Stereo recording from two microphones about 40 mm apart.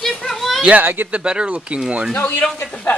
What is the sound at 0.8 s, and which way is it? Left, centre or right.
Speech, right.